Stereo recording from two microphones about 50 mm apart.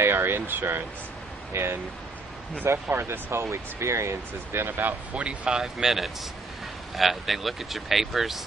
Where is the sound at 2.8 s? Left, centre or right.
Right.